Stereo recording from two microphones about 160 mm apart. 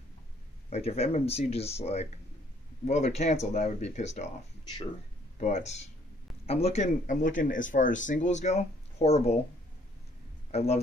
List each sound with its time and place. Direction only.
0.7 s speech: 40° left (ahead or behind)
5.4 s speech: 45° left (ahead or behind)
10.5 s speech: 40° left (ahead or behind)